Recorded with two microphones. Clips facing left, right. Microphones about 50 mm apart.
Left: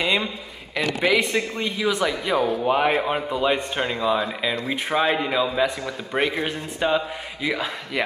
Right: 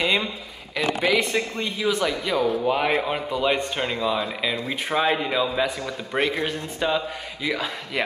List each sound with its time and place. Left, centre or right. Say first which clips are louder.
0.0 s a man's voice: even; centre